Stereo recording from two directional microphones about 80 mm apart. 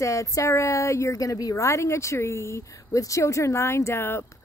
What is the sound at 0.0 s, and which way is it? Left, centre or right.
A woman's voice, left.